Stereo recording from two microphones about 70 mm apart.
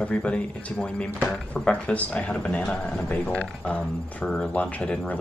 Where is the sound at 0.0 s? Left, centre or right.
Centre.